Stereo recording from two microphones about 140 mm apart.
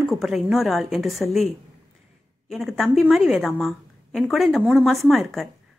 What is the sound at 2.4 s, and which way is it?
A woman's voice, centre (ahead or behind).